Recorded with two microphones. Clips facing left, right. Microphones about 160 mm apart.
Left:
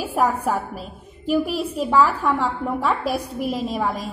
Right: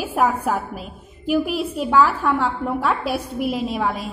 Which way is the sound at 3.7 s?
5° right (ahead or behind).